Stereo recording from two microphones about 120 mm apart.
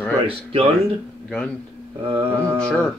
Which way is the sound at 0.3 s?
50° right (ahead or behind).